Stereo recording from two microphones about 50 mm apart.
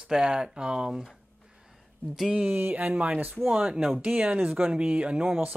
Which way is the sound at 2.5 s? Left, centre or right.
Right.